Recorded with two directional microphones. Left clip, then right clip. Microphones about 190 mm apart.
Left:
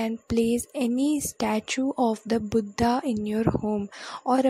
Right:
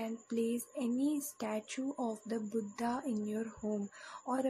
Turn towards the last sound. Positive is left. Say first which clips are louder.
# left 13 dB
turn(degrees=45)  # may be behind; listen again after turning